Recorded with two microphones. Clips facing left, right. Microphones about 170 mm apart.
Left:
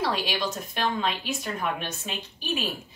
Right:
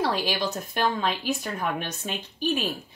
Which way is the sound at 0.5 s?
40° right (ahead or behind).